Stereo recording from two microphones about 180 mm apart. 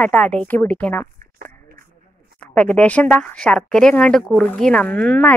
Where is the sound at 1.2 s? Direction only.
50° right (ahead or behind).